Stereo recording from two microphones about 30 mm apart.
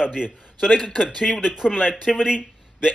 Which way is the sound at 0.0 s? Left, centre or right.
Right.